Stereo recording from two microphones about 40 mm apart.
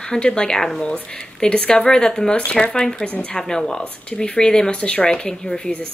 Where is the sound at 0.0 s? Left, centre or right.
Left.